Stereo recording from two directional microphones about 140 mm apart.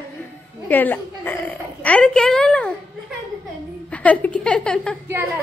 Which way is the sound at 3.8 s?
10° left (ahead or behind).